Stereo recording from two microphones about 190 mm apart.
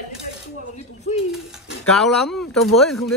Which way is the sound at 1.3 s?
Centre (ahead or behind).